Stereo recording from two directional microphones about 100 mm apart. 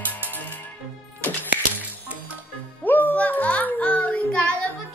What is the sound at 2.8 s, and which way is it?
Music, 15° left (ahead or behind).